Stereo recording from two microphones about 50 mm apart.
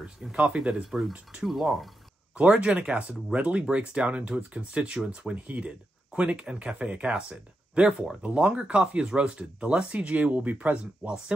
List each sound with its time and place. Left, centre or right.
0.3 s speech: right
0.8 s speech: centre
2.5 s speech: right
4.9 s speech: centre